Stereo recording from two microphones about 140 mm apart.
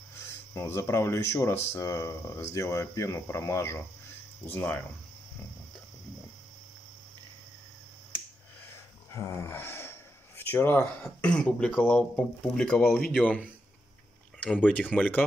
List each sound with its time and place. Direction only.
0.6 s speech: 20° left (ahead or behind)
9.1 s speech: 20° left (ahead or behind)